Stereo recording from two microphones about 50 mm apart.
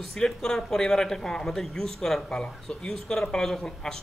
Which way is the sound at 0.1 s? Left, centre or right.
Centre.